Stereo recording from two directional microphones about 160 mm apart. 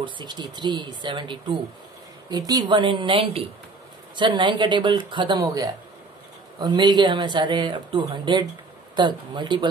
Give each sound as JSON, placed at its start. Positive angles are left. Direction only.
{"t": 0.0, "sound": "speech", "side_deg": -30}